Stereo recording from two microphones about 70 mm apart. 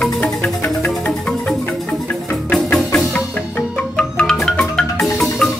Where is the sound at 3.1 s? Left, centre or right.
Left.